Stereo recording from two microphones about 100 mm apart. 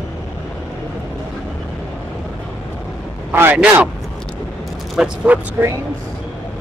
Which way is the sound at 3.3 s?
20° right (ahead or behind).